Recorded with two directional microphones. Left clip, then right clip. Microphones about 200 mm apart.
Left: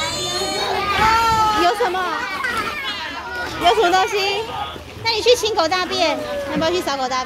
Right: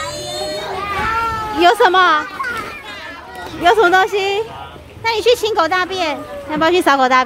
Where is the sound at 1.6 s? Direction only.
45° right (ahead or behind).